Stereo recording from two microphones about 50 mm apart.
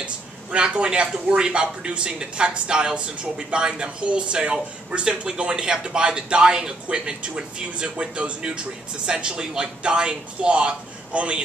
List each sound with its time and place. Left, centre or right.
0.0 s speech: right